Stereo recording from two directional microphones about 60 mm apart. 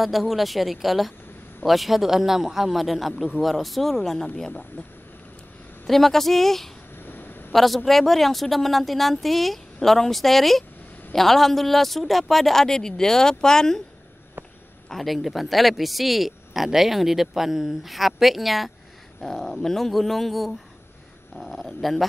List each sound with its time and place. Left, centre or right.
0.0 s speech: centre
4.5 s a man's voice: left
5.9 s speech: centre
7.0 s a sound: left
7.5 s speech: centre
14.9 s speech: centre